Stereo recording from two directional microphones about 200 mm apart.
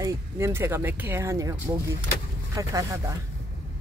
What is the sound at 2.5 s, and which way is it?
Speech, 15° right (ahead or behind).